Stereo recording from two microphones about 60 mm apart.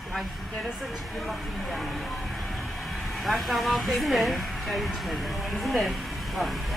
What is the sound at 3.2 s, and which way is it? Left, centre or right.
Speech, centre.